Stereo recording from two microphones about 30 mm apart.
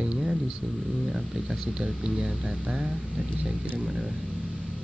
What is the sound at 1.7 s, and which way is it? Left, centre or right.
Speech, right.